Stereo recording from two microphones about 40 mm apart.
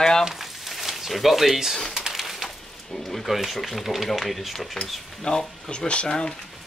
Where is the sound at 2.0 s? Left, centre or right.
Centre.